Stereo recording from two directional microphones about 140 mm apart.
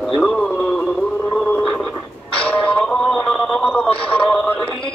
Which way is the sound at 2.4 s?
10° left (ahead or behind).